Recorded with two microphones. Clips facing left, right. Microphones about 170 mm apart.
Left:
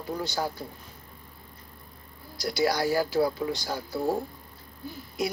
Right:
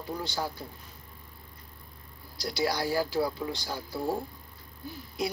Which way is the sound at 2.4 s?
45° left (ahead or behind).